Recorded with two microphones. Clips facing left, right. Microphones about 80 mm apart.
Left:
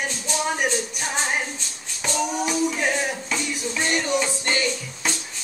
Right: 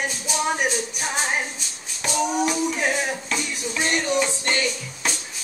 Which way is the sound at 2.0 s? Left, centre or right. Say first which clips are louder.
Right 2 dB; centre.